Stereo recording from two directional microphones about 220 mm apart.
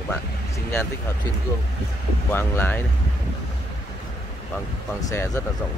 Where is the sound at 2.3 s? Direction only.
10° left (ahead or behind).